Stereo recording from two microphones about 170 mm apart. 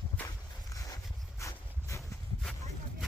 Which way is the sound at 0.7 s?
20° left (ahead or behind).